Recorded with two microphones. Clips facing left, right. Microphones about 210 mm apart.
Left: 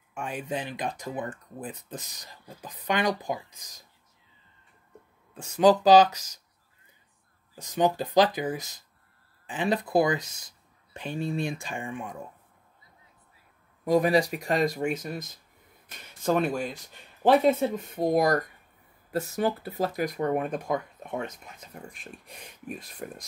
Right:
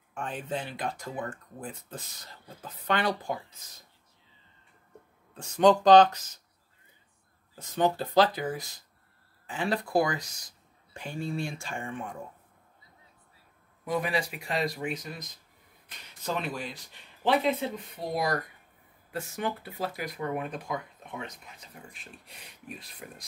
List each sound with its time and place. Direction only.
0.1 s speech: 10° left (ahead or behind)
5.3 s speech: 5° left (ahead or behind)
7.6 s speech: 15° left (ahead or behind)
13.8 s speech: 40° left (ahead or behind)